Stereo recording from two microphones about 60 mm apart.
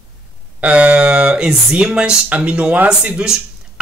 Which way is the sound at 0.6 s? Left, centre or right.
Right.